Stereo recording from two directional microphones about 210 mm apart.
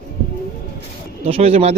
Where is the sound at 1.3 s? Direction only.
30° right (ahead or behind).